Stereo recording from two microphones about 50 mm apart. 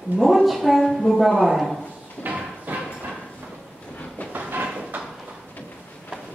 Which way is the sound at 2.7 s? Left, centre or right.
Right.